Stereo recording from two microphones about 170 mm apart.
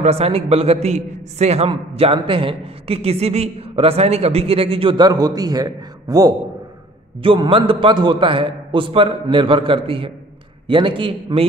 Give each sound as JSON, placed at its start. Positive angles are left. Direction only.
{"t": 0.0, "sound": "a man's voice", "side_deg": -35}